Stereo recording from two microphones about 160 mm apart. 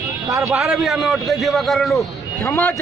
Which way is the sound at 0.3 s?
20° right (ahead or behind).